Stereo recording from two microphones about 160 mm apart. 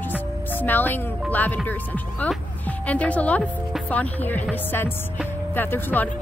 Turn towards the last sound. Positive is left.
turn(degrees=10)  # may be behind; listen again after turning